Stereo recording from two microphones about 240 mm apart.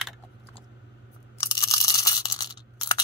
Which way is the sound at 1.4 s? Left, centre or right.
Centre.